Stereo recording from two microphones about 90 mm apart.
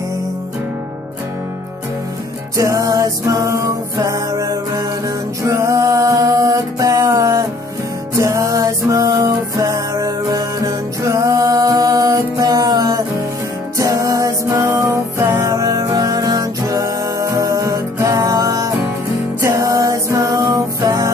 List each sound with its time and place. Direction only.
2.5 s music: 35° right (ahead or behind)